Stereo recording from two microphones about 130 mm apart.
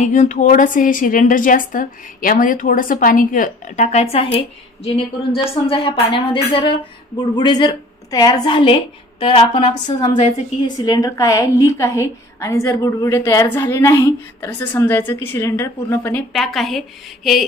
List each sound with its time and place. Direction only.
0.0 s a woman's voice: 70° left (ahead or behind); by 9.4 s 40° left (ahead or behind)
10.8 s a woman's voice: 30° left (ahead or behind)
16.3 s a woman's voice: centre (ahead or behind)